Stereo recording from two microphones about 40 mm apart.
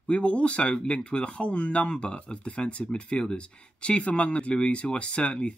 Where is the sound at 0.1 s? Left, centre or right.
Left.